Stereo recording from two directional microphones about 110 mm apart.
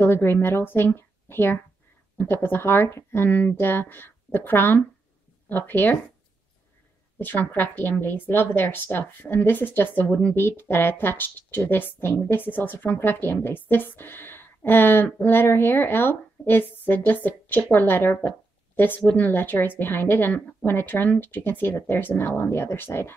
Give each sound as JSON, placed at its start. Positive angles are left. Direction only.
{"t": 0.0, "sound": "a woman's voice", "side_deg": 20}
{"t": 7.5, "sound": "a woman's voice", "side_deg": 15}